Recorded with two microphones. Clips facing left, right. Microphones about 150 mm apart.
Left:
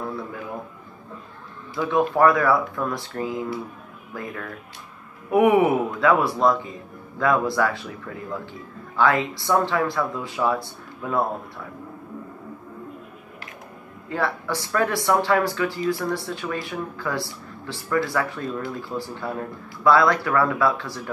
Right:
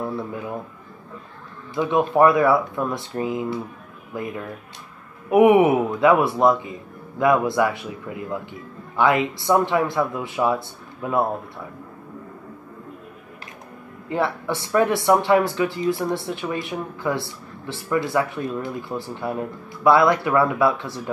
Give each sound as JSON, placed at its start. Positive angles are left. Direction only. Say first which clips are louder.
{"t": 1.8, "sound": "a man's voice", "louder": "right 2 dB", "side_deg": -20}
{"t": 14.0, "sound": "speech", "louder": "right 3 dB", "side_deg": -20}